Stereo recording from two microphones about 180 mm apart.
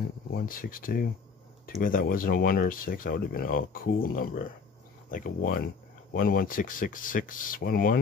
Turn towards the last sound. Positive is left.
turn(degrees=55)  # may be behind; listen again after turning